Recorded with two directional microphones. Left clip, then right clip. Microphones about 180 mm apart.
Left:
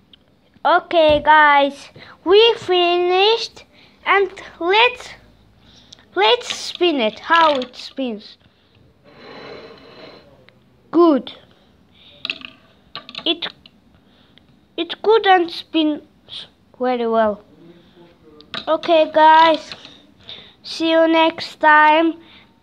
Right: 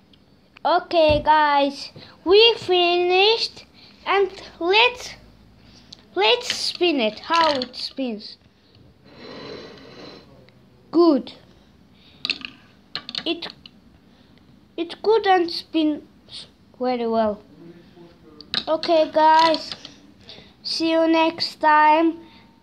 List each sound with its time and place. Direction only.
0.6 s a woman's voice: 10° left (ahead or behind)
10.9 s a woman's voice: 15° left (ahead or behind)
12.2 s a sound: 20° right (ahead or behind)
13.2 s speech: 15° left (ahead or behind)
14.8 s speech: 15° left (ahead or behind)
18.7 s speech: 15° left (ahead or behind)